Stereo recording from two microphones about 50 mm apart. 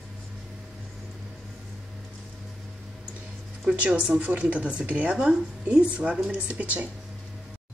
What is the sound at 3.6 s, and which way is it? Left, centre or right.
Speech, right.